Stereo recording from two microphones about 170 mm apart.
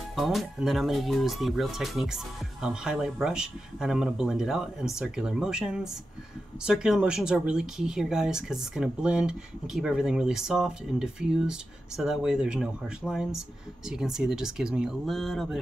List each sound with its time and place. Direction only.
0.1 s speech: centre (ahead or behind)